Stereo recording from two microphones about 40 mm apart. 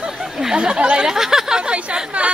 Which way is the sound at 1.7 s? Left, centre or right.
Right.